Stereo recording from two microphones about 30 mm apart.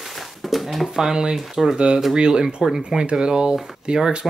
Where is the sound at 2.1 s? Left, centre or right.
Right.